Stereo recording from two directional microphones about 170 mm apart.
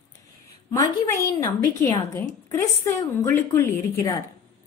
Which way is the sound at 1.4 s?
20° left (ahead or behind).